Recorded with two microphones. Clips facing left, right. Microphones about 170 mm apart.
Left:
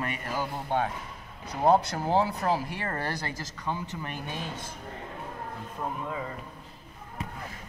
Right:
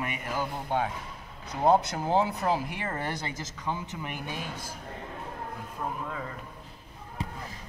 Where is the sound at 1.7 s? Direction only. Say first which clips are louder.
Even; 20° right (ahead or behind).